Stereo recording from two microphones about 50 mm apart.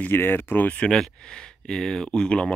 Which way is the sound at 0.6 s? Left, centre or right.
Left.